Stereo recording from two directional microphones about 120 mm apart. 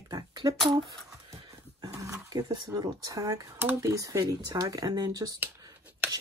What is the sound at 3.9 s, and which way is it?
Speech, 25° right (ahead or behind).